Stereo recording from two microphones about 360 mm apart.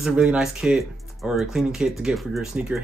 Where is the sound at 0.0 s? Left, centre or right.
Centre.